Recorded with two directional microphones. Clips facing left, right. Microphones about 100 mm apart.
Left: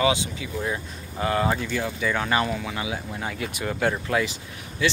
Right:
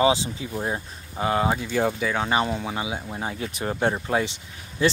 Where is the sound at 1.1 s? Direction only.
20° right (ahead or behind).